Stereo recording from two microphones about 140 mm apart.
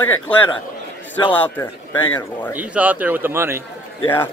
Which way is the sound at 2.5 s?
10° right (ahead or behind).